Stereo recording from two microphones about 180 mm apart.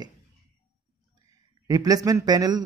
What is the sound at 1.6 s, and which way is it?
Speech, 20° right (ahead or behind).